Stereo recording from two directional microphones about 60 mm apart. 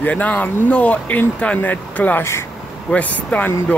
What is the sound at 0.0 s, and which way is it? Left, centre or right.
Speech, left.